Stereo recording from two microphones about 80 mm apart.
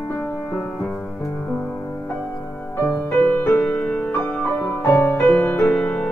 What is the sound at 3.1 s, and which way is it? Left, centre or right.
Music, left.